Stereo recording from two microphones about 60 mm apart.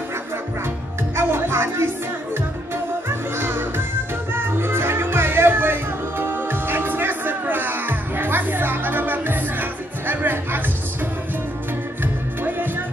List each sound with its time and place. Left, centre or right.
1.1 s music: right
3.1 s music: right
12.0 s music: right